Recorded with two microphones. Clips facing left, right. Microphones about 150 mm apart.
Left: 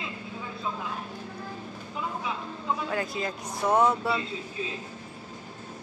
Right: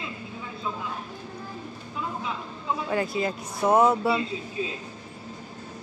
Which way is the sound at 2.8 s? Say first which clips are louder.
Right 4 dB; 5° right (ahead or behind).